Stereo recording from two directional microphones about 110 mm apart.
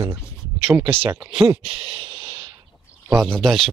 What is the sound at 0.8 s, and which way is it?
Speech, 55° right (ahead or behind).